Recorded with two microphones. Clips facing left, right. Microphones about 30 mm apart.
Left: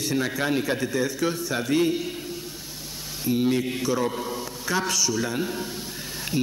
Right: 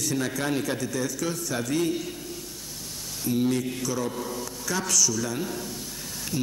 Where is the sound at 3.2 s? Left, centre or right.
Left.